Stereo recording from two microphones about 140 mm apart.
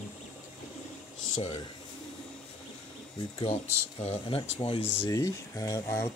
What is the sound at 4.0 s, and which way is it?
Speech, 45° left (ahead or behind).